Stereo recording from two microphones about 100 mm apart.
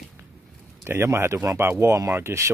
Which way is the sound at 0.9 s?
25° right (ahead or behind).